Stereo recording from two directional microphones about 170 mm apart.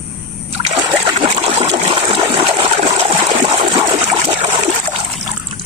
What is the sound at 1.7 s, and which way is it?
Water, 35° right (ahead or behind).